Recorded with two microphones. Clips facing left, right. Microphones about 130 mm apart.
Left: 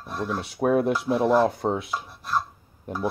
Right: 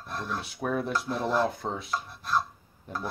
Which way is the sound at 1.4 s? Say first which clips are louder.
Left 7 dB; 65° left (ahead or behind).